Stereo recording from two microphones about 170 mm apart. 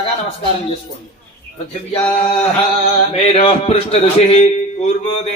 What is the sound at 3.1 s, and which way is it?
A man's voice, 35° left (ahead or behind).